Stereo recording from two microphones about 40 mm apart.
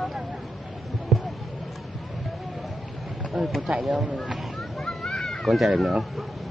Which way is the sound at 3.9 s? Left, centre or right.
Right.